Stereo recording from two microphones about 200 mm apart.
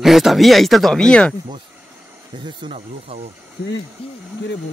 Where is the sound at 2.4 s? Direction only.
25° right (ahead or behind).